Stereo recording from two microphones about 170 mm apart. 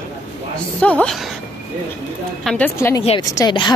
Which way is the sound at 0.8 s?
5° left (ahead or behind).